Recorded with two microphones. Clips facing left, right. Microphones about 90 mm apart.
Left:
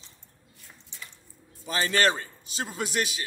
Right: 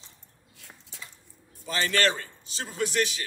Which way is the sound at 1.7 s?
20° left (ahead or behind).